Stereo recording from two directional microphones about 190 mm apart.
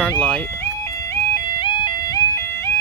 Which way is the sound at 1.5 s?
25° left (ahead or behind).